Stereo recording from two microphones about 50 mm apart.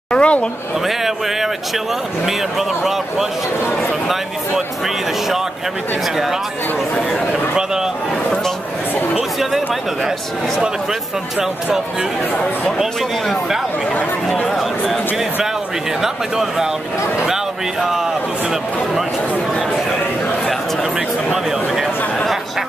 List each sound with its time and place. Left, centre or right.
0.1 s a sound: left
0.8 s a sound: centre
4.1 s speech: centre
7.1 s speech: centre
14.4 s speech: centre
21.3 s speech: centre